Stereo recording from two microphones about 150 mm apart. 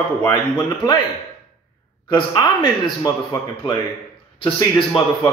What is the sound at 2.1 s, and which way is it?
A man's voice, 25° left (ahead or behind).